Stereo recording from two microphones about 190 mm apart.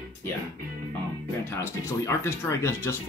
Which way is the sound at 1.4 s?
15° left (ahead or behind).